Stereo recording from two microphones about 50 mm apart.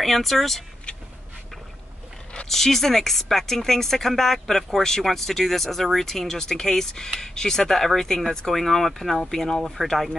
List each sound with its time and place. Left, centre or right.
0.0 s speech: centre
0.9 s vehicle: left
2.4 s speech: centre